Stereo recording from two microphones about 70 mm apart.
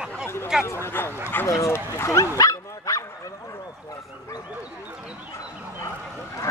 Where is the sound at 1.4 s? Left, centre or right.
Left.